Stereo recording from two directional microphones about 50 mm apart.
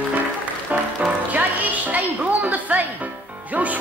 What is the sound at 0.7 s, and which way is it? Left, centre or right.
Music, right.